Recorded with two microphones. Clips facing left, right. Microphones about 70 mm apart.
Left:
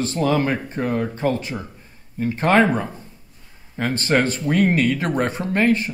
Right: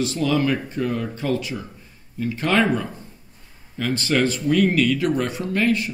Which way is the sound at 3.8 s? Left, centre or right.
Left.